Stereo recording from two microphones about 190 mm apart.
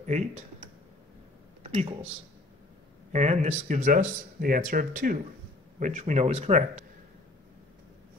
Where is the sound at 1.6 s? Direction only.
30° right (ahead or behind).